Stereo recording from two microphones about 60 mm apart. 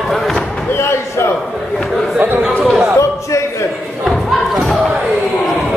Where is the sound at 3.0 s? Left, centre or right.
Left.